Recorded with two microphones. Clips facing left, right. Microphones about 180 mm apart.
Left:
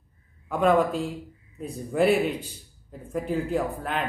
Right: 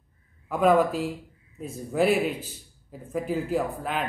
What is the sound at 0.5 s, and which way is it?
Speech, 5° right (ahead or behind).